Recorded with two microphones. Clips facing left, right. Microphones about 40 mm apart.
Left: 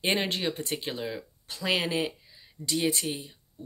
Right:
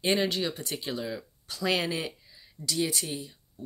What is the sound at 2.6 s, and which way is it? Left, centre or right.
Speech, left.